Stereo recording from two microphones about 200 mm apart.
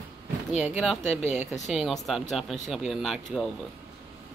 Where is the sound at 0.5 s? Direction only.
5° right (ahead or behind).